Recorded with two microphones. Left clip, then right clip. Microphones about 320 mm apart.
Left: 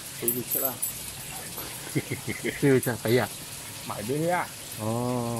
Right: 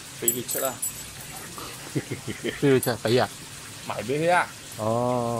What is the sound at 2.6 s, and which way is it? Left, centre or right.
Speech, centre.